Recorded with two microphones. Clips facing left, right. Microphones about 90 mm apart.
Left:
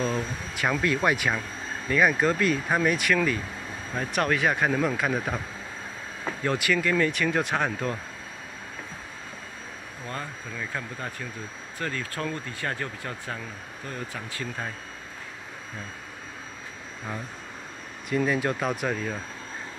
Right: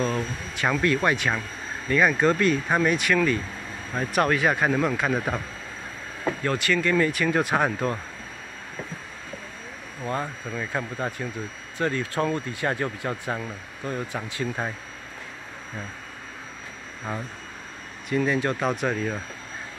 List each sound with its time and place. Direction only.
0.0 s a sound: 5° left (ahead or behind)
0.9 s speech: 10° left (ahead or behind)
6.4 s speech: 10° left (ahead or behind)
7.5 s speech: 10° right (ahead or behind)
10.0 s speech: 20° right (ahead or behind)
18.1 s speech: 5° left (ahead or behind)